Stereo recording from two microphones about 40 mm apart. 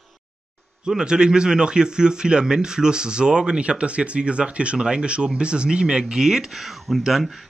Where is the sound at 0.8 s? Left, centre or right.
Right.